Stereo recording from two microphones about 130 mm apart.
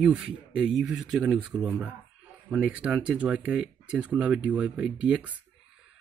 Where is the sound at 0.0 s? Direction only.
5° right (ahead or behind).